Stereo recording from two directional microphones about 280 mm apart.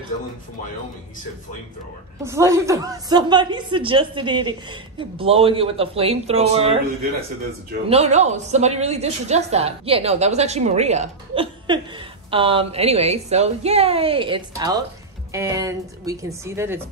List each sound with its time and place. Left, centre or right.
2.2 s a woman's voice: centre
7.9 s a woman's voice: right